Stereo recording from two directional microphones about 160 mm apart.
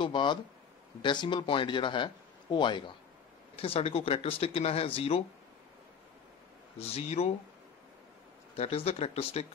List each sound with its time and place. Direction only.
0.0 s speech: 30° left (ahead or behind)
6.8 s speech: 40° left (ahead or behind)
8.5 s speech: 40° left (ahead or behind)